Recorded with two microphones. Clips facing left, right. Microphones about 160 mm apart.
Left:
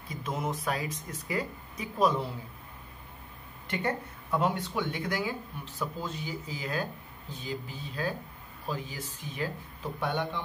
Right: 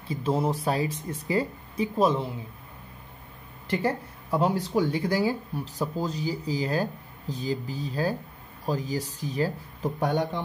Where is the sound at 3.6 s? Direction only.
30° right (ahead or behind).